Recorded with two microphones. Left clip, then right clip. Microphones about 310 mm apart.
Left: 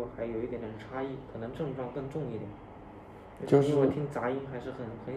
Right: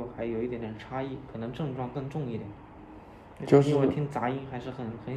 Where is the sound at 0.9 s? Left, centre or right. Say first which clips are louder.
Right 2 dB; right.